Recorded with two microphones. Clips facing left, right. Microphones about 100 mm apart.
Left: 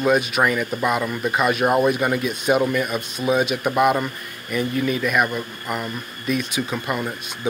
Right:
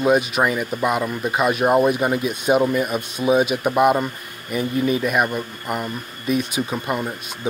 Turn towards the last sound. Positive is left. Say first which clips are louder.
# right 1 dB
turn(degrees=-20)  # may be behind; listen again after turning